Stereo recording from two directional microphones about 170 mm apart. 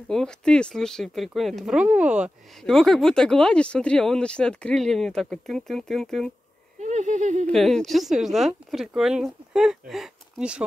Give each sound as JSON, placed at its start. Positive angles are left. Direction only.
{"t": 0.1, "sound": "speech", "side_deg": 5}
{"t": 6.8, "sound": "speech", "side_deg": -45}
{"t": 7.4, "sound": "speech", "side_deg": 5}